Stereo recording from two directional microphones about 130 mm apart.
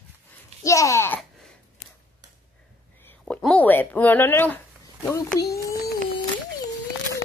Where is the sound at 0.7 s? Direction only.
25° left (ahead or behind).